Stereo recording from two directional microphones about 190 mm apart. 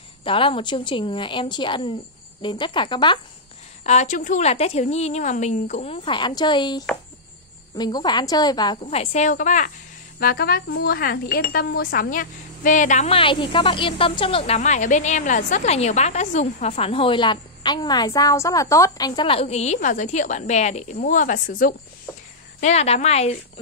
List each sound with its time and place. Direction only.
0.2 s a woman's voice: 25° left (ahead or behind)
3.8 s a woman's voice: 40° left (ahead or behind)
10.1 s speech: 55° left (ahead or behind)
13.2 s speech: 25° left (ahead or behind); by 21.7 s 45° left (ahead or behind)
22.6 s speech: 35° left (ahead or behind)